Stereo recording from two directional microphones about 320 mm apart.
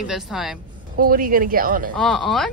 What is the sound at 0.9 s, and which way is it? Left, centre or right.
Speech, right.